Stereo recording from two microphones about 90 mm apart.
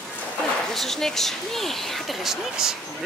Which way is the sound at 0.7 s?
5° left (ahead or behind).